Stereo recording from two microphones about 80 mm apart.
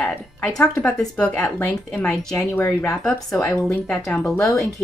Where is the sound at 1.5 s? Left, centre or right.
Left.